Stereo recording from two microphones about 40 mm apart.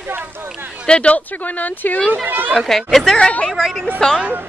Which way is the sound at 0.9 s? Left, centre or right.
Left.